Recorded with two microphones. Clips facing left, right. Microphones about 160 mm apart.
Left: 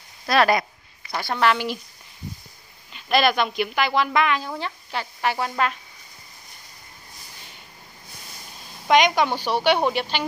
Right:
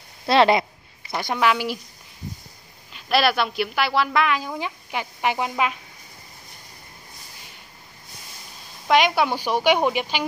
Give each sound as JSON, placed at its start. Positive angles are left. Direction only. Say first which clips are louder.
{"t": 0.3, "sound": "a sound", "louder": "right 2 dB", "side_deg": -25}
{"t": 1.2, "sound": "a woman's voice", "louder": "even", "side_deg": -10}
{"t": 2.9, "sound": "speech", "louder": "even", "side_deg": -5}
{"t": 8.8, "sound": "a woman's voice", "louder": "left 1 dB", "side_deg": -5}